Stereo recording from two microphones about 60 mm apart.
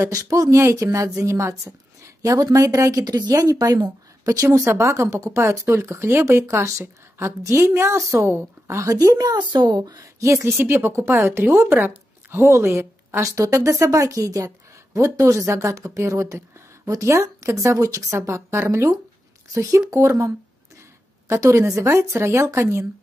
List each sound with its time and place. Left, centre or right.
0.0 s speech: right
2.2 s speech: right
4.5 s speech: right
9.2 s speech: right
10.6 s speech: right
12.4 s a woman's voice: right
13.2 s speech: right
16.0 s speech: right
19.5 s speech: right
19.9 s speech: right
21.5 s speech: right